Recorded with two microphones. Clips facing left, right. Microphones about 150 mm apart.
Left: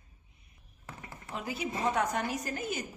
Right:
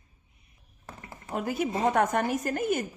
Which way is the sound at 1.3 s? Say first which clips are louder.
Right 7 dB; 50° right (ahead or behind).